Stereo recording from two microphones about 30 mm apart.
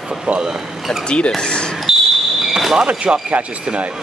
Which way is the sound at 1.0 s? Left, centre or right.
Left.